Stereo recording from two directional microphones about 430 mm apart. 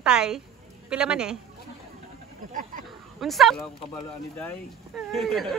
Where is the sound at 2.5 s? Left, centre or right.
Centre.